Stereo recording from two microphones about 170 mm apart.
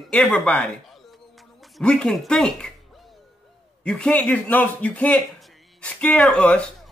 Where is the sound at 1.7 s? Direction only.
5° left (ahead or behind).